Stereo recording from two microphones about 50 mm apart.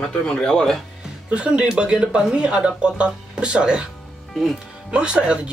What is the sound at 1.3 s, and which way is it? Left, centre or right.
Speech, right.